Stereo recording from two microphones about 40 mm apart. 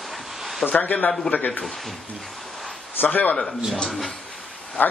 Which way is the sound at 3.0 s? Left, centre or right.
Left.